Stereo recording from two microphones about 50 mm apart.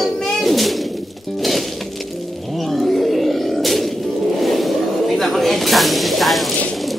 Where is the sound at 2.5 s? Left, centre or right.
Centre.